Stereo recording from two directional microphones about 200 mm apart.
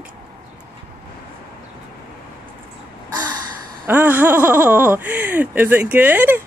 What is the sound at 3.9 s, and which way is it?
Speech, 10° right (ahead or behind).